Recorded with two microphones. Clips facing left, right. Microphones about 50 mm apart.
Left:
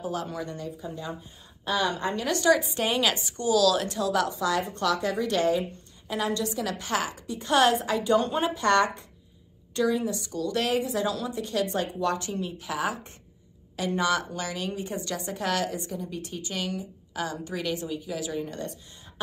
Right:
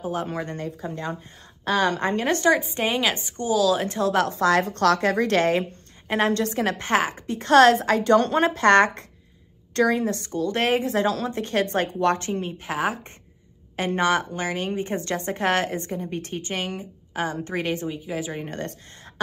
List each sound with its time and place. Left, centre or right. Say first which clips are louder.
0.0 s a woman's voice: right 4 dB; right
3.9 s a woman's voice: right 4 dB; right
7.3 s a woman's voice: right 7 dB; right
18.4 s a woman's voice: right 2 dB; right